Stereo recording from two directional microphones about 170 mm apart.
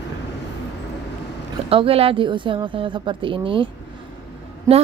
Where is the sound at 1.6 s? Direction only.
35° right (ahead or behind).